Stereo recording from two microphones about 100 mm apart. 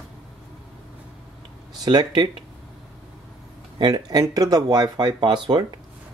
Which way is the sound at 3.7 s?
45° right (ahead or behind).